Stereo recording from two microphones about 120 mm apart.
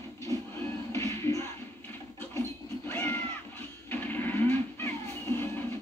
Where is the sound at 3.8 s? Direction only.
15° left (ahead or behind).